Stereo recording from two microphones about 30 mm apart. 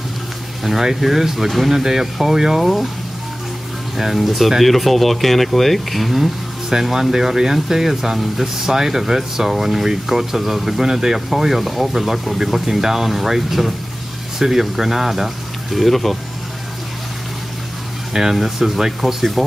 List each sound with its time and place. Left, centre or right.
0.7 s speech: centre
3.9 s speech: centre
6.7 s speech: centre
11.9 s speech: centre
18.3 s speech: centre